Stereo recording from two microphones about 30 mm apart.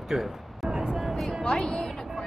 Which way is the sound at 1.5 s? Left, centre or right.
Left.